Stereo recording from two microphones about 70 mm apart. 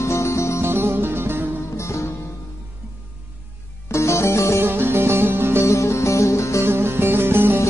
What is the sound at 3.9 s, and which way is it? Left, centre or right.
Music, left.